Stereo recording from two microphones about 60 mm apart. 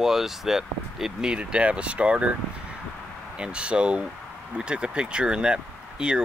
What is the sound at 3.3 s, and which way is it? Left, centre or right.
Speech, centre.